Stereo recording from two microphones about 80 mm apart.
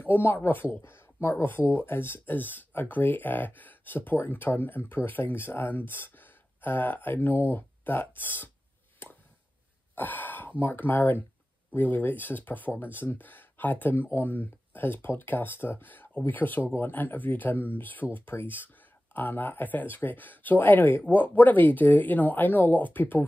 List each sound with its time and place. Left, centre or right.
0.0 s speech: left
9.9 s speech: left